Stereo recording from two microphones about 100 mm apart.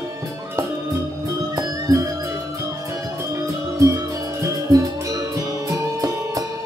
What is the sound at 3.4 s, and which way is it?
Music, 30° right (ahead or behind).